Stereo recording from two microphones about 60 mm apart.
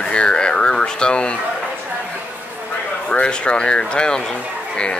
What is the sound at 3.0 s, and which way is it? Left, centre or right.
Speech, centre.